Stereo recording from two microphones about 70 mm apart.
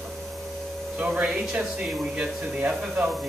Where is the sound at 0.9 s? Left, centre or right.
Centre.